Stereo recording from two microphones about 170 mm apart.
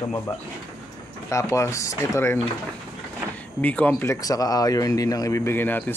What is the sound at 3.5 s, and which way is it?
Speech, 10° left (ahead or behind).